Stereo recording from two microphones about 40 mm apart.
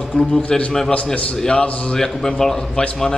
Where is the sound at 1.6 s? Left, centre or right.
Left.